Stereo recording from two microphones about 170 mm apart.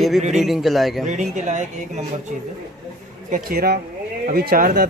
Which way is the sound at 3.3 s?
60° right (ahead or behind).